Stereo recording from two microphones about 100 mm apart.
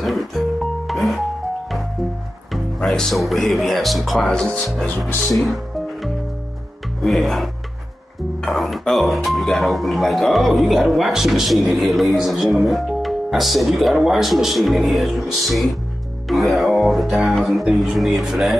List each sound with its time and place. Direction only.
0.0 s music: centre (ahead or behind)
2.5 s speech: 5° left (ahead or behind)
4.8 s speech: 15° left (ahead or behind)
7.0 s speech: centre (ahead or behind)